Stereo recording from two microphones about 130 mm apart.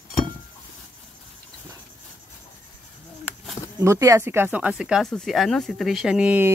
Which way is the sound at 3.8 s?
25° right (ahead or behind).